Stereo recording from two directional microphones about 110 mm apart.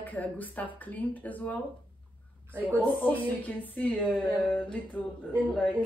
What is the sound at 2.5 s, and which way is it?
Speech, 15° right (ahead or behind).